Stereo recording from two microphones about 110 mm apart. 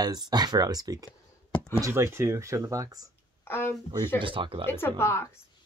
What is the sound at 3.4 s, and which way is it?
Speech, 20° left (ahead or behind).